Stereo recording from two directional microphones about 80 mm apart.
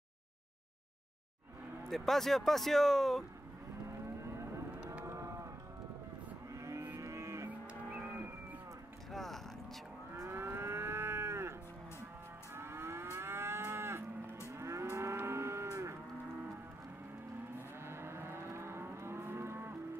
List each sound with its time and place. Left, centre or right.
1.9 s speech: centre
5.0 s livestock: right
6.5 s livestock: right
9.1 s cattle: centre
10.1 s livestock: right
12.5 s moo: right
17.6 s livestock: right